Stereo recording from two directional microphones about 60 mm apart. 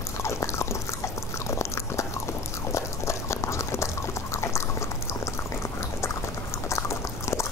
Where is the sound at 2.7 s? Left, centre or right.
Left.